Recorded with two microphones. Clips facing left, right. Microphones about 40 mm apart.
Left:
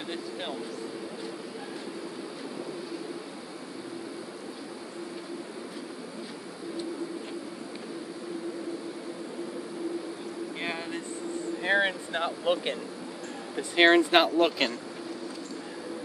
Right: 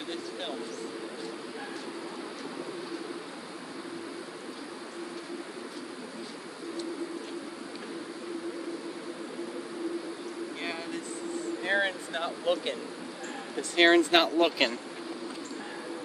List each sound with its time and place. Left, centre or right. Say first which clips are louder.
11.6 s vehicle: left 3 dB; left
13.6 s speech: left 1 dB; centre